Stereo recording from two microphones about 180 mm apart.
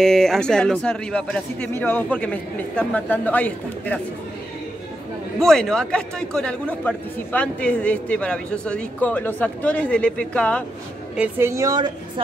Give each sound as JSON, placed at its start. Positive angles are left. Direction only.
{"t": 0.0, "sound": "a man's voice", "side_deg": 0}
{"t": 5.4, "sound": "a man's voice", "side_deg": 5}
{"t": 11.1, "sound": "speech", "side_deg": -15}